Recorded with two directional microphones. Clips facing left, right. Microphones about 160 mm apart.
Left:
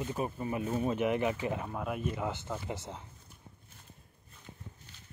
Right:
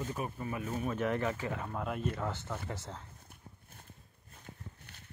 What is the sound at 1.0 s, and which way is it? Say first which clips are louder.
Speech: left 3 dB; 15° left (ahead or behind).